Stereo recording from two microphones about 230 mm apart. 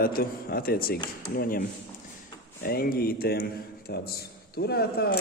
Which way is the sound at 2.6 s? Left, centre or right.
Left.